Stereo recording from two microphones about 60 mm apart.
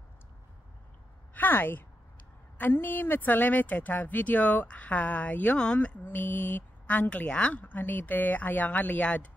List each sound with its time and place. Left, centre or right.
1.3 s speech: left